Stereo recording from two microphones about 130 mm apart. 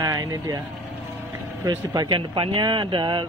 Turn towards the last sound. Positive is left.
turn(degrees=-40)  # may be behind; listen again after turning